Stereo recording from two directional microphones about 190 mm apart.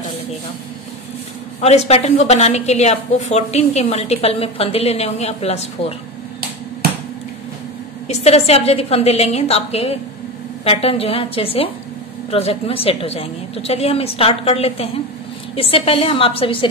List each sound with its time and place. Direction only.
1.6 s a woman's voice: 35° left (ahead or behind)
8.1 s a woman's voice: 35° left (ahead or behind)